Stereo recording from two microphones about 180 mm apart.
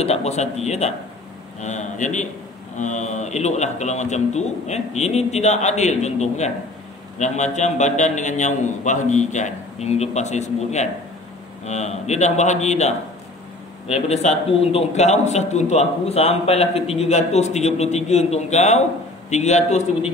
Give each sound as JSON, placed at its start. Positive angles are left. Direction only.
{"t": 0.0, "sound": "a man's voice", "side_deg": 35}